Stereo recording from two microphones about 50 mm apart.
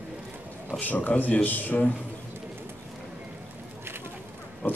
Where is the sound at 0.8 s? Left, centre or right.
Left.